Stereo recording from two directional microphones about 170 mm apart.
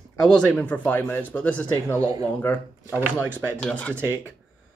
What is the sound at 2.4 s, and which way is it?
Speech, 10° left (ahead or behind).